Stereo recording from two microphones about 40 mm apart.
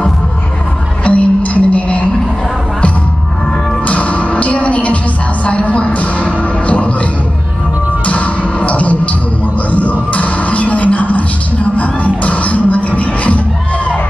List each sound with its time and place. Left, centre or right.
1.0 s music: left
3.8 s music: left
8.0 s music: left